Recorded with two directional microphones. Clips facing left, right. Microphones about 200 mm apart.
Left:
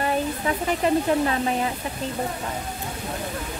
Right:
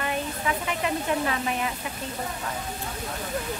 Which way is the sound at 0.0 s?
35° left (ahead or behind).